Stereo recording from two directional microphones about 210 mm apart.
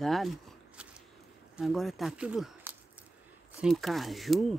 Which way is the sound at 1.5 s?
Centre (ahead or behind).